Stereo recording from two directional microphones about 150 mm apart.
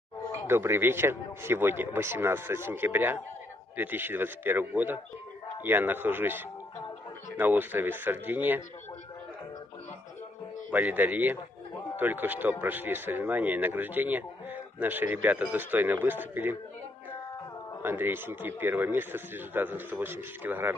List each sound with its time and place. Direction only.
0.5 s speech: 15° right (ahead or behind)
10.7 s speech: 10° right (ahead or behind)
17.8 s speech: 15° right (ahead or behind)